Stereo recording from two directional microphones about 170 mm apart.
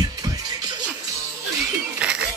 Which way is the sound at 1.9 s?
5° right (ahead or behind).